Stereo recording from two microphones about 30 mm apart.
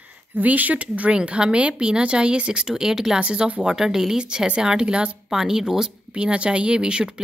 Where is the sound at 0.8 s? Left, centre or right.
Right.